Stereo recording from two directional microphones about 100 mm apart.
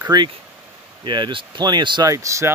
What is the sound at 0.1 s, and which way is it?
Speech, 45° right (ahead or behind).